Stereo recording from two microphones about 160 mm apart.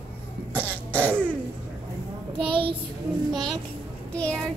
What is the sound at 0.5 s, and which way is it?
Throat clearing, 10° left (ahead or behind).